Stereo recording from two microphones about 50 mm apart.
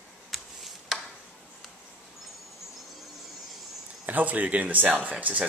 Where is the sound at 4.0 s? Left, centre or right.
Right.